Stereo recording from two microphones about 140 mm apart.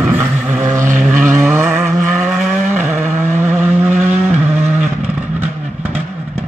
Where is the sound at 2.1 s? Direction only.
Centre (ahead or behind).